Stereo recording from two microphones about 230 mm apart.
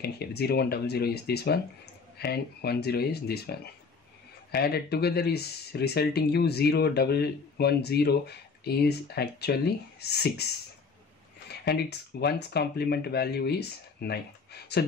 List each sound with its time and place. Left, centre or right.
0.0 s speech: left